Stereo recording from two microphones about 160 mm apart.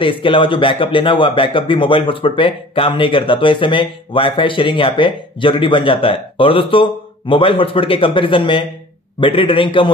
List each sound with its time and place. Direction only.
0.0 s speech: 35° left (ahead or behind)